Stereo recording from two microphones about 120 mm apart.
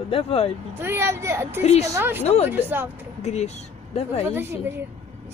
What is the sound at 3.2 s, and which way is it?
Speech, 65° left (ahead or behind).